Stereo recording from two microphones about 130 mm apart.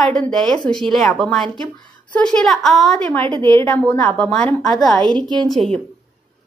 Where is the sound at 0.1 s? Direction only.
5° left (ahead or behind).